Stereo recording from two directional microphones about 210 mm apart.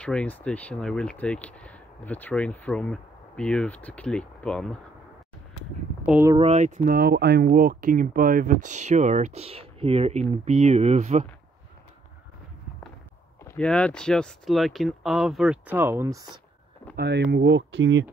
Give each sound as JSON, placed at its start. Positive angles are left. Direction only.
{"t": 0.0, "sound": "speech", "side_deg": 5}
{"t": 6.0, "sound": "speech", "side_deg": -10}
{"t": 6.3, "sound": "speech", "side_deg": -30}
{"t": 13.4, "sound": "speech", "side_deg": 5}
{"t": 16.9, "sound": "speech", "side_deg": -50}